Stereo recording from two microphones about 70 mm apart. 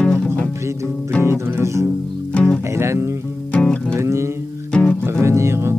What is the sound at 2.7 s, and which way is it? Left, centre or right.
Music, right.